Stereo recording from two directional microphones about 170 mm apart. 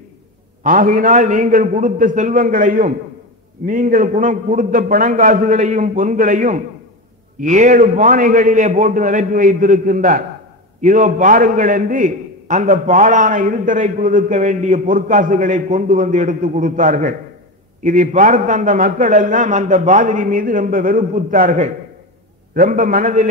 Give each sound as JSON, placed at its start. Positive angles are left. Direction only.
{"t": 0.7, "sound": "a man's voice", "side_deg": -50}